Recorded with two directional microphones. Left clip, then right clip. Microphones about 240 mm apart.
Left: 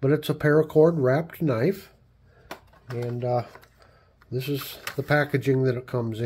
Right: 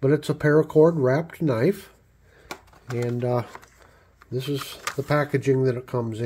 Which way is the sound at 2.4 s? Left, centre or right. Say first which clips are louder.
Right 3 dB; right.